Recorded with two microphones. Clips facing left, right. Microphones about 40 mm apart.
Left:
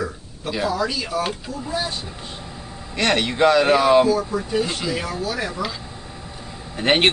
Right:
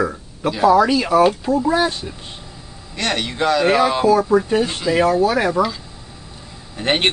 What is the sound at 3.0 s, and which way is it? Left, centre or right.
A man's voice, centre.